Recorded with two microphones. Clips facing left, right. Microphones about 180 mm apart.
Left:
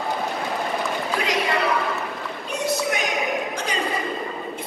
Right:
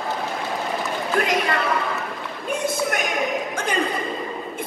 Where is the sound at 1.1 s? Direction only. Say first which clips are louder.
Right 4 dB; 55° right (ahead or behind).